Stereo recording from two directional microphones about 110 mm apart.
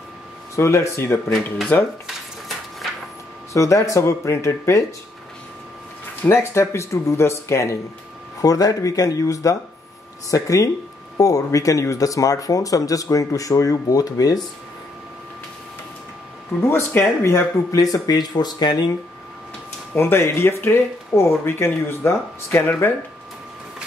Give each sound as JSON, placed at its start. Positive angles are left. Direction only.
{"t": 0.6, "sound": "speech", "side_deg": 25}
{"t": 3.5, "sound": "speech", "side_deg": 30}
{"t": 6.2, "sound": "speech", "side_deg": 25}
{"t": 16.6, "sound": "speech", "side_deg": 20}
{"t": 19.9, "sound": "speech", "side_deg": 20}